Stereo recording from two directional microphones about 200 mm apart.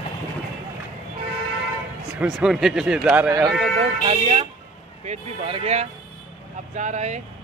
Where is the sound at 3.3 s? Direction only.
15° right (ahead or behind).